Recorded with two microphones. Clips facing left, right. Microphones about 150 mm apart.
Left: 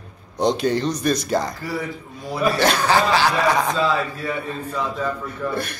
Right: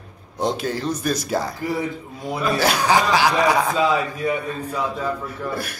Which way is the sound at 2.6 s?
10° right (ahead or behind).